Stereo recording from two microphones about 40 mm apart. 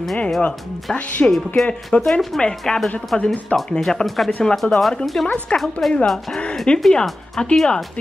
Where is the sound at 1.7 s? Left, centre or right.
Centre.